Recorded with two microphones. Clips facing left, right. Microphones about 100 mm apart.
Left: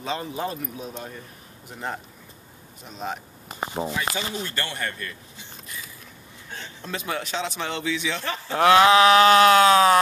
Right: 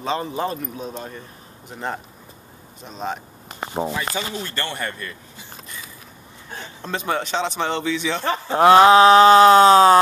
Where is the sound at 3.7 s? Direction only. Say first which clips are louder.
Right 4 dB; 35° right (ahead or behind).